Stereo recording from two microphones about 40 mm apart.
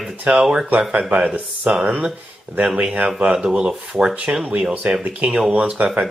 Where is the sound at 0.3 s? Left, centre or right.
Right.